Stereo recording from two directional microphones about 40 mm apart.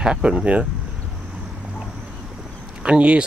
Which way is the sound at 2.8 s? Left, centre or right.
Right.